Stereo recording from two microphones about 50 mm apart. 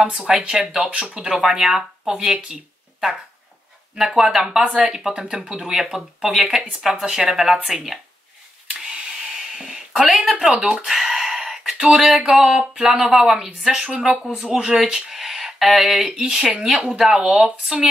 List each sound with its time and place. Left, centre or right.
0.0 s speech: right
0.8 s speech: centre
1.3 s a woman's voice: centre
2.3 s a sound: centre
3.9 s speech: centre
5.1 s a woman's voice: centre
8.6 s a sound: centre
10.4 s a sound: centre
12.3 s a woman's voice: centre
13.6 s speech: centre